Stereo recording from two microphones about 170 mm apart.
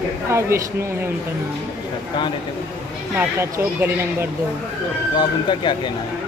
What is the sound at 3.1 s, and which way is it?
Speech, 15° right (ahead or behind).